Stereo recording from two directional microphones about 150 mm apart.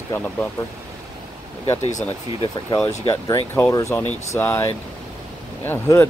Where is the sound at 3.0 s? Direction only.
20° left (ahead or behind).